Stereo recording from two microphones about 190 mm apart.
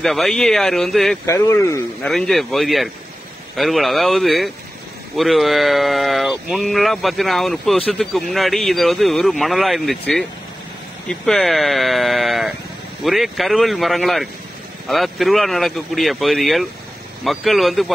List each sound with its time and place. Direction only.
0.0 s speech: centre (ahead or behind)
1.2 s a man's voice: 15° left (ahead or behind)
2.0 s speech: centre (ahead or behind)